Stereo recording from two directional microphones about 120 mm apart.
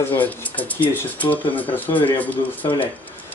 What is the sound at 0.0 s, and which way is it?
Speech, 15° left (ahead or behind).